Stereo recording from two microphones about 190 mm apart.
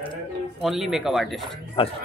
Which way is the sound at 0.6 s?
Centre (ahead or behind).